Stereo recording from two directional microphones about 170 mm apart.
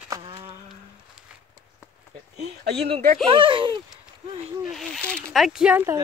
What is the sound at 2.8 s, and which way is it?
Speech, 65° right (ahead or behind).